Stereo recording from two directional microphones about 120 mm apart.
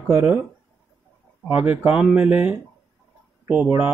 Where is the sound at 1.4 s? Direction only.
15° right (ahead or behind).